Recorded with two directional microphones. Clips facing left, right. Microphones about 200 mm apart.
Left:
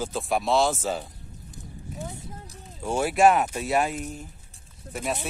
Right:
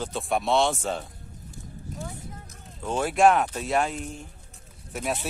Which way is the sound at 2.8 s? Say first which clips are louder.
Left 1 dB; 10° left (ahead or behind).